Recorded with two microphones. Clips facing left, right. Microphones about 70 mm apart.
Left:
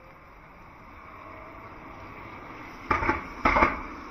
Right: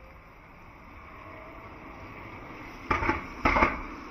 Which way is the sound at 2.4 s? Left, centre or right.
Centre.